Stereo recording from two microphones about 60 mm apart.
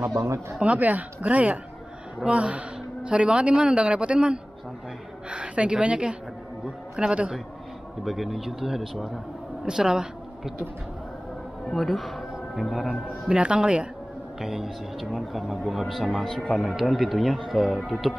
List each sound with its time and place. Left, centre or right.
0.0 s speech: right
0.6 s a man's voice: right
8.0 s speech: centre
11.7 s speech: centre
13.3 s speech: centre
14.4 s speech: centre